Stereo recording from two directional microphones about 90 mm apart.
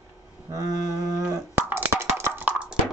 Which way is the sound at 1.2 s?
25° right (ahead or behind).